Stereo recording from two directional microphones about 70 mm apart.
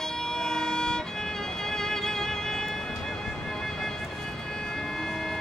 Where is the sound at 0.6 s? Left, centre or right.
Centre.